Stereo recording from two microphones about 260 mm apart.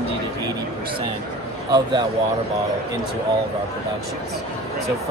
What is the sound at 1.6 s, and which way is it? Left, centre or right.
Speech, centre.